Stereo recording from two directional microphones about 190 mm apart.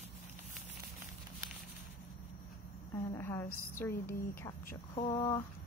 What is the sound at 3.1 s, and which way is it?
A woman's voice, 10° left (ahead or behind).